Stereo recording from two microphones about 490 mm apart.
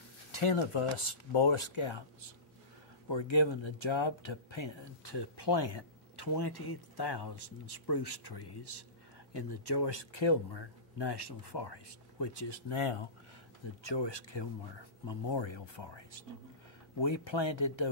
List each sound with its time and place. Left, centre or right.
0.3 s speech: left
3.1 s speech: left
13.8 s speech: left